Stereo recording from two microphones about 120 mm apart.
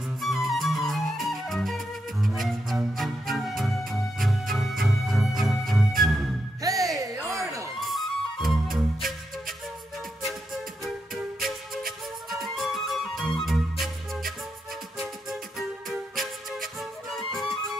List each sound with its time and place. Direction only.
0.2 s music: centre (ahead or behind)
6.6 s music: 30° right (ahead or behind)
7.2 s a sound: 25° right (ahead or behind)
7.8 s music: centre (ahead or behind)
10.8 s music: centre (ahead or behind)